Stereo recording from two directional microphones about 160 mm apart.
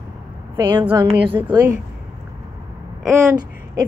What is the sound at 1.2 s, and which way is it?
Speech, 30° right (ahead or behind).